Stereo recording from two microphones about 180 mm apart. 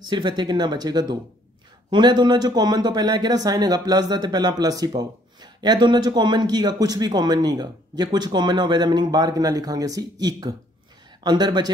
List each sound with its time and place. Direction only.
0.1 s speech: 25° right (ahead or behind)